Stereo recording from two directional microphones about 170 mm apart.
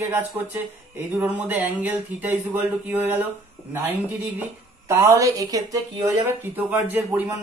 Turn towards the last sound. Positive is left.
turn(degrees=-10)  # may be behind; listen again after turning